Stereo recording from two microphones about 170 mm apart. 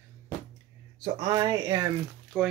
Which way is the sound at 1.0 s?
25° right (ahead or behind).